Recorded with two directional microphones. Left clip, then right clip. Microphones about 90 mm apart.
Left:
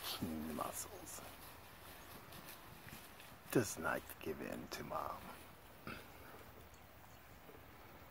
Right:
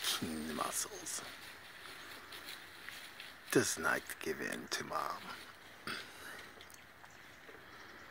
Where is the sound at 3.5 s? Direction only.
10° right (ahead or behind).